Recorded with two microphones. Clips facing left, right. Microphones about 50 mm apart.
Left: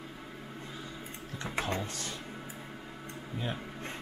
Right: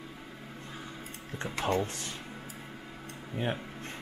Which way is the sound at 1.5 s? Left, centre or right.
Left.